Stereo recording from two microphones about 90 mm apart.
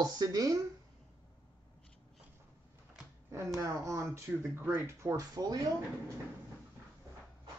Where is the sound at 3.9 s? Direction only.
30° right (ahead or behind).